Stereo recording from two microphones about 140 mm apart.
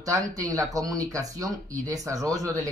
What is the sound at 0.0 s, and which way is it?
Speech, 25° right (ahead or behind).